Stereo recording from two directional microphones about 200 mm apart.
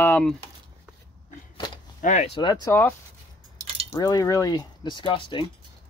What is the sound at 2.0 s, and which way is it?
Speech, 40° left (ahead or behind).